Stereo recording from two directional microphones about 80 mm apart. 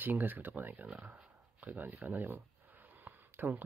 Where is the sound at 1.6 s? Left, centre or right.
Right.